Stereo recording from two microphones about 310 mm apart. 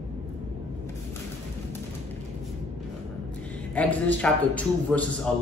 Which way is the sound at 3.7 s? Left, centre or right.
Centre.